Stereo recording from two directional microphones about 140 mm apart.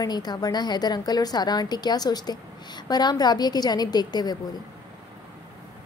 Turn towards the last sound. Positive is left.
turn(degrees=30)  # may be behind; listen again after turning